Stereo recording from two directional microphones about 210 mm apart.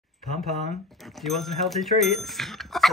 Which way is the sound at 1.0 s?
Centre (ahead or behind).